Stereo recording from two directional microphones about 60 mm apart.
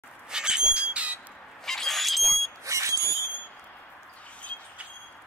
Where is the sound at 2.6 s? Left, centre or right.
Right.